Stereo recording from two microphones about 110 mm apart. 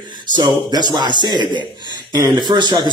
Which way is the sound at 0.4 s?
40° right (ahead or behind).